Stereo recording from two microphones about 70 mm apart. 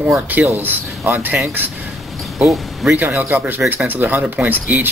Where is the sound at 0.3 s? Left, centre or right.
Right.